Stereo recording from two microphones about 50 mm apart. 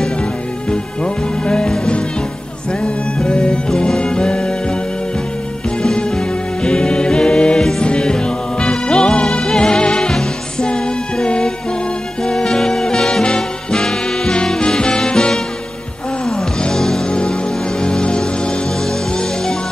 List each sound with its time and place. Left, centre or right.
0.7 s music: centre
2.8 s music: centre
5.8 s music: centre